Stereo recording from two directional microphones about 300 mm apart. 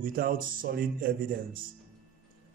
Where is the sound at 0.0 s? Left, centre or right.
Right.